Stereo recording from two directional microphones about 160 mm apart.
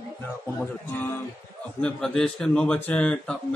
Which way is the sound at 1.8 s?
5° left (ahead or behind).